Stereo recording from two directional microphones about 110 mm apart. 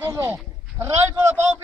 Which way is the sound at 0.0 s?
25° right (ahead or behind).